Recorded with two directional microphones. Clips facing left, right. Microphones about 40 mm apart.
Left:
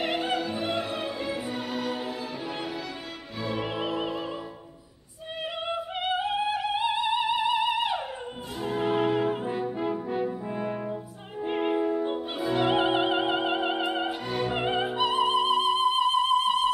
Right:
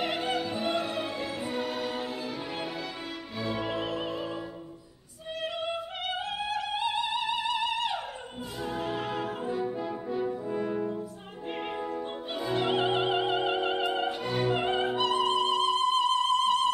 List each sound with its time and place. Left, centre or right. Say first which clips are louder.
0.0 s music: left 2 dB; centre
3.4 s music: left 2 dB; centre
5.9 s music: left 6 dB; centre
9.5 s brass instrument: left 2 dB; left
11.4 s opera: left 8 dB; centre
14.3 s music: even; centre